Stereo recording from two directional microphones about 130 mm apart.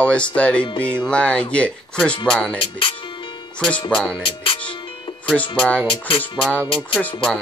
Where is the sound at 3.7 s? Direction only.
5° left (ahead or behind).